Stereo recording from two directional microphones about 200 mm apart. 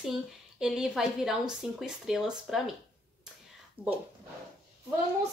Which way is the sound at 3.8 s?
25° right (ahead or behind).